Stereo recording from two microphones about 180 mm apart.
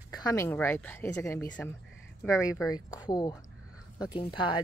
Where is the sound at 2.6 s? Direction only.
20° left (ahead or behind).